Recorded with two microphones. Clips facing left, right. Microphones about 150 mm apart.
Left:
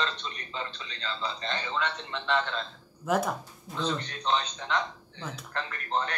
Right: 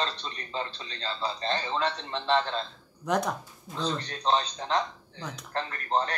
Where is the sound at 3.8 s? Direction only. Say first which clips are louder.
Even; 35° right (ahead or behind).